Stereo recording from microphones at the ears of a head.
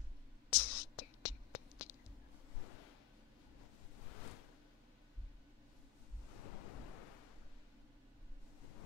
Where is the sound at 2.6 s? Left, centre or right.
Left.